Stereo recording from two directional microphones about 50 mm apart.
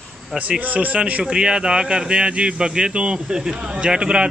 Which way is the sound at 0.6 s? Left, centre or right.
Right.